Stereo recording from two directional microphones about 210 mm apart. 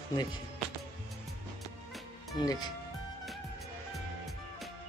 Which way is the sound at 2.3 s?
20° left (ahead or behind).